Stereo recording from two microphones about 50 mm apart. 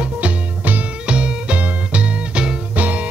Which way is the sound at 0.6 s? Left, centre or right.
Right.